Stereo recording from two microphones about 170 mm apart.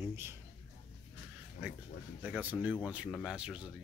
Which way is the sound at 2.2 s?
10° right (ahead or behind).